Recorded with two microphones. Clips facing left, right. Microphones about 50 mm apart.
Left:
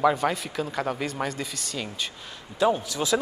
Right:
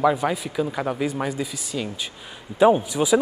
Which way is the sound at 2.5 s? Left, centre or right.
Right.